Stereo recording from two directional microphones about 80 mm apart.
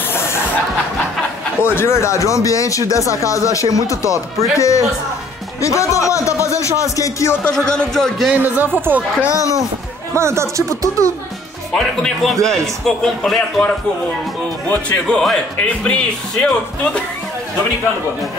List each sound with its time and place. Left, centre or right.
0.1 s a sound: left
1.6 s speech: left
7.5 s a man's voice: centre
8.4 s a woman's voice: right
9.3 s speech: left
10.1 s speech: right
11.7 s a man's voice: centre
14.7 s speech: centre